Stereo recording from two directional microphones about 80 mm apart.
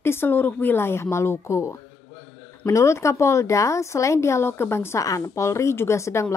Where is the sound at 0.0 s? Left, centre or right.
Left.